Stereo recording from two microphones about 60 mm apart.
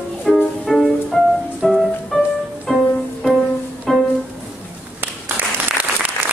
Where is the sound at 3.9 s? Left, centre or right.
Centre.